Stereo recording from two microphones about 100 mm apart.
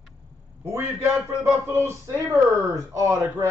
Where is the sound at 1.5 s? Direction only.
25° right (ahead or behind).